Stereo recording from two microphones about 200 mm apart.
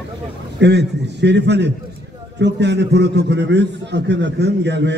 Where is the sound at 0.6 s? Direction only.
60° right (ahead or behind).